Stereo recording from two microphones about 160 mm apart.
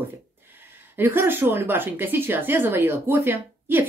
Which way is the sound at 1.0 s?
15° right (ahead or behind).